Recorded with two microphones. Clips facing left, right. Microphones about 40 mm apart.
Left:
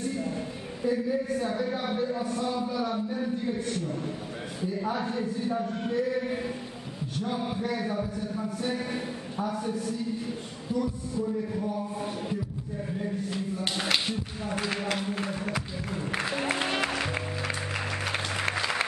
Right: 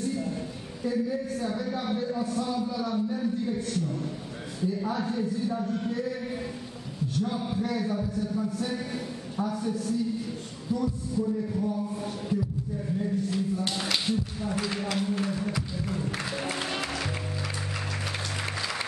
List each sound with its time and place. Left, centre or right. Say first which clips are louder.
0.1 s a sound: even; centre
0.8 s a man's voice: left 1 dB; centre
5.5 s music: even; centre
7.2 s a man's voice: right 1 dB; centre
10.7 s music: right 1 dB; centre
12.8 s speech: right 3 dB; centre
15.0 s music: right 2 dB; left